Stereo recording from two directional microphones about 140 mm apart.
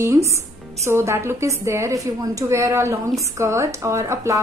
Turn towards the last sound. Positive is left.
turn(degrees=-20)  # may be behind; listen again after turning